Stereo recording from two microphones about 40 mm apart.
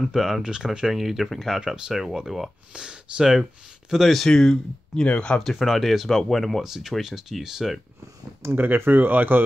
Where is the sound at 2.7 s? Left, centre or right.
Right.